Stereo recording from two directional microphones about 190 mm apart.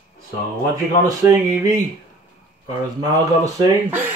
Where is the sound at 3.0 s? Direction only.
20° right (ahead or behind).